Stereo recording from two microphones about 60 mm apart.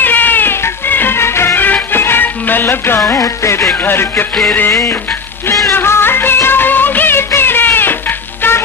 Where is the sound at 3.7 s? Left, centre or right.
Left.